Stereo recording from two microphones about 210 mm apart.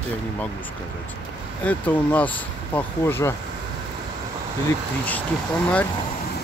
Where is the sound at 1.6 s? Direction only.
10° left (ahead or behind).